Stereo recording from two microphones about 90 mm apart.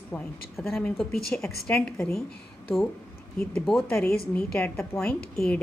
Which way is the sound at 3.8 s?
25° left (ahead or behind).